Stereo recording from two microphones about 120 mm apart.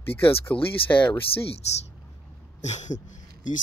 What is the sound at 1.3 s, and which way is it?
Speech, 55° left (ahead or behind).